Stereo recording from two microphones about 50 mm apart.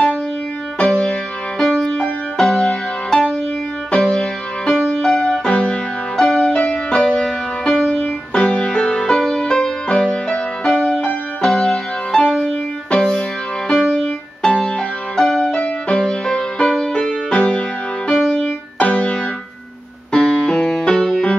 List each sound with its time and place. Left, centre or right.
0.7 s music: left
1.6 s music: centre